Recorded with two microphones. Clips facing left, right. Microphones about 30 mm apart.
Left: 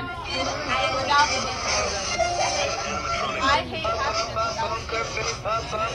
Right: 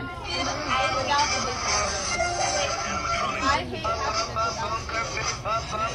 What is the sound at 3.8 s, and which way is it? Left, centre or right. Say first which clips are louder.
Chatter: left 2 dB; centre.